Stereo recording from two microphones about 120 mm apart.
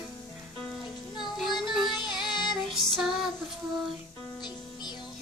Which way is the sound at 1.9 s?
35° left (ahead or behind).